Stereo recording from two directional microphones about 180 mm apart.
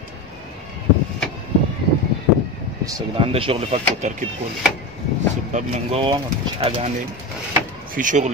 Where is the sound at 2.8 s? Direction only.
20° right (ahead or behind).